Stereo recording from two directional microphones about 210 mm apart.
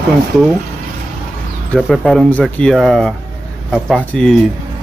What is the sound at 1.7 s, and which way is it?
Speech, 5° left (ahead or behind).